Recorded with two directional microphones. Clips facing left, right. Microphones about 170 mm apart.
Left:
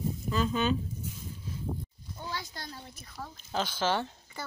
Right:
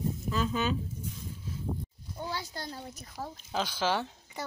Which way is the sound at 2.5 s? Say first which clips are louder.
Right 4 dB; 40° right (ahead or behind).